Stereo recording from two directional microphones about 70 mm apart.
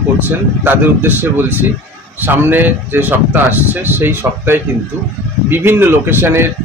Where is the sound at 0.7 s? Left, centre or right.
Right.